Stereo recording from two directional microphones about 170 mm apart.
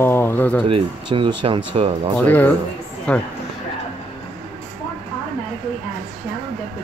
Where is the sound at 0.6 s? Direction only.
30° right (ahead or behind).